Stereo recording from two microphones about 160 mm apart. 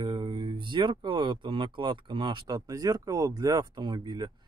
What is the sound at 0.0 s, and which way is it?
Speech, 30° right (ahead or behind).